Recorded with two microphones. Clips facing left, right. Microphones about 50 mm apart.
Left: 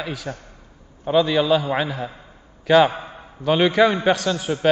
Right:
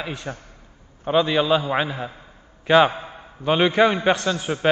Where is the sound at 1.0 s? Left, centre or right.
Centre.